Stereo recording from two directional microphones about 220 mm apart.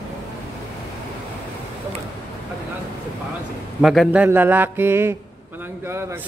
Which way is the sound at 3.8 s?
Centre (ahead or behind).